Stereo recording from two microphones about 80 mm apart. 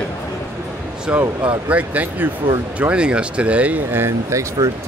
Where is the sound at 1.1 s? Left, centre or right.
Centre.